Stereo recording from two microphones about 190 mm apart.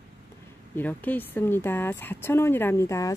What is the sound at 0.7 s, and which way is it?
Speech, 10° left (ahead or behind).